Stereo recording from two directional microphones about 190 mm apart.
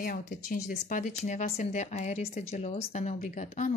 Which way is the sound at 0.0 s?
50° left (ahead or behind).